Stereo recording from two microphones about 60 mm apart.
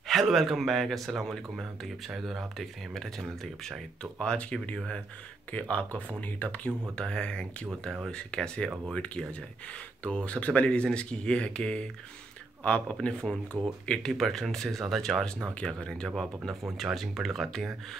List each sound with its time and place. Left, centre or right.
0.0 s speech: centre
14.1 s speech: centre
16.7 s speech: centre